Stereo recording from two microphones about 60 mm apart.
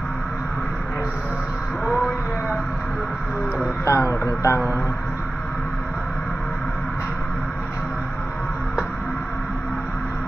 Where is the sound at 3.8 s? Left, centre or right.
Left.